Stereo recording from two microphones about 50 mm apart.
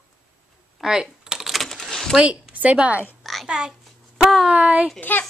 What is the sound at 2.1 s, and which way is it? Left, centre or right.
Speech, right.